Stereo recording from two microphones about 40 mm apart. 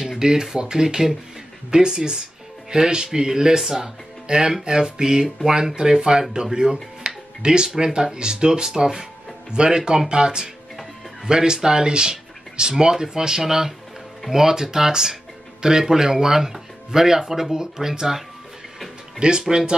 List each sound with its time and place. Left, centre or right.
0.2 s speech: centre